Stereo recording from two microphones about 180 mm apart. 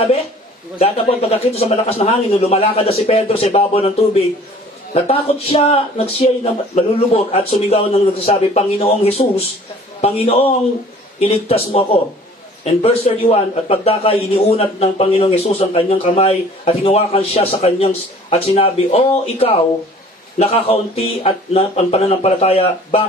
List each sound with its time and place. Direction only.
0.7 s a man's voice: 35° left (ahead or behind)